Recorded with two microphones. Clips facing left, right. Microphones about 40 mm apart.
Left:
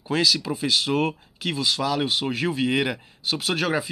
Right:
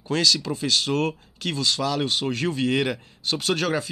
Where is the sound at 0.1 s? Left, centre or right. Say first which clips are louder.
Even; centre.